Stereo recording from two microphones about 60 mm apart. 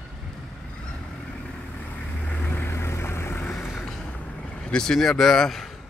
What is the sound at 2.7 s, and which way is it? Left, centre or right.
Vehicle, left.